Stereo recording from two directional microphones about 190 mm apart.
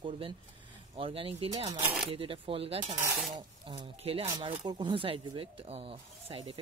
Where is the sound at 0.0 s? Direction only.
25° right (ahead or behind).